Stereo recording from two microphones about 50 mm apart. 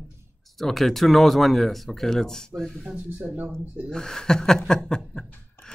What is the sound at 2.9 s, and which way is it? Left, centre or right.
Speech, right.